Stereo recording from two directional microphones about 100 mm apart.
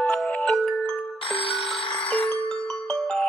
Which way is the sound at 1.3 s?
70° left (ahead or behind).